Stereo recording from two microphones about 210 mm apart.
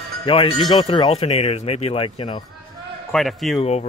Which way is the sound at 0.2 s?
25° left (ahead or behind).